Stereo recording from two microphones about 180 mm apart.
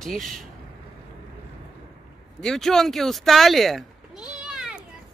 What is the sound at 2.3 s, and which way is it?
Speech, centre (ahead or behind).